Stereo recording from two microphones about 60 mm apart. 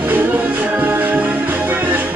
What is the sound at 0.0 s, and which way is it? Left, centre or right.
Music, right.